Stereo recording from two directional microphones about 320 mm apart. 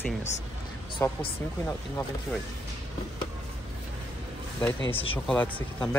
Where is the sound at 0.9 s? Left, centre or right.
Centre.